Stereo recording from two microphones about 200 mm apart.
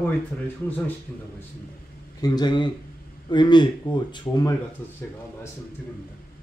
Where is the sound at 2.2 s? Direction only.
20° left (ahead or behind).